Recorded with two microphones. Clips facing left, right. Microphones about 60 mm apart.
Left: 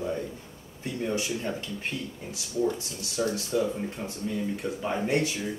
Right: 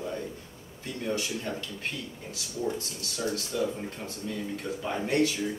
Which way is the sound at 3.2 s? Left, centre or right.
Centre.